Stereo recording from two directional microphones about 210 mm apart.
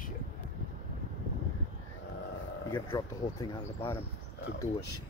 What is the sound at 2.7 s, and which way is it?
Speech, 20° left (ahead or behind).